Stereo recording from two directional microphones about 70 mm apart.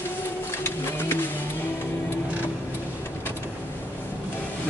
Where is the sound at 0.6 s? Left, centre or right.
Left.